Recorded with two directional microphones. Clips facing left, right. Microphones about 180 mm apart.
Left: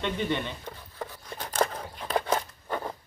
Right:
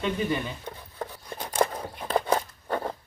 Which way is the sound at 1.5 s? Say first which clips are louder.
Right 2 dB; 10° right (ahead or behind).